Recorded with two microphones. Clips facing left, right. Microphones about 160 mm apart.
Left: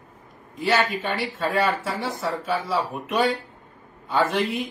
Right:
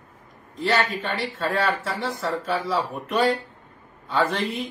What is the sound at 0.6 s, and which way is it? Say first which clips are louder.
Speech: left 1 dB; centre (ahead or behind).